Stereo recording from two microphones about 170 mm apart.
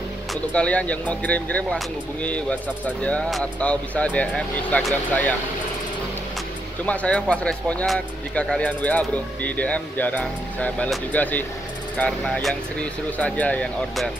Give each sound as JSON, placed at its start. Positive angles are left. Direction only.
{"t": 0.3, "sound": "speech", "side_deg": 5}
{"t": 6.9, "sound": "speech", "side_deg": 5}